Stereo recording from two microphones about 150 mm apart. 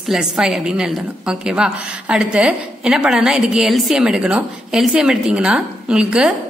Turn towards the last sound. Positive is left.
turn(degrees=-5)  # may be behind; listen again after turning